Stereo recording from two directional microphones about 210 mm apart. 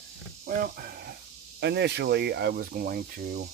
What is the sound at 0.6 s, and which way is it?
Speech, 45° right (ahead or behind).